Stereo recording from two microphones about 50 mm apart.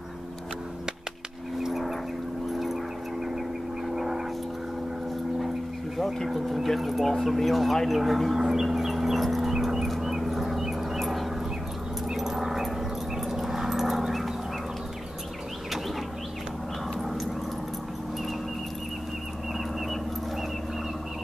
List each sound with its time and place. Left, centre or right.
1.6 s vehicle: centre
2.5 s music: centre
3.9 s a sound: centre
6.2 s speech: centre
7.3 s a sound: centre
12.1 s dog: centre
17.0 s dog: centre